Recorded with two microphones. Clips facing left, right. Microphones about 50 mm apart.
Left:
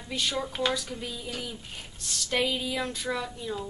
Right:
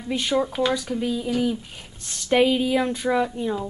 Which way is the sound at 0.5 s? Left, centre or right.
Centre.